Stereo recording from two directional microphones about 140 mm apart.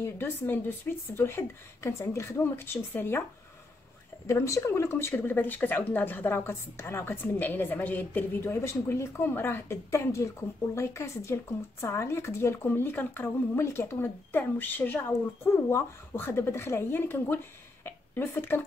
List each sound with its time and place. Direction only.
0.0 s speech: 15° left (ahead or behind)
4.3 s speech: 20° left (ahead or behind)